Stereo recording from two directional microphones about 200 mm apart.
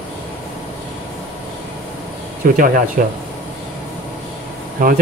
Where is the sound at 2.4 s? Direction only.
40° right (ahead or behind).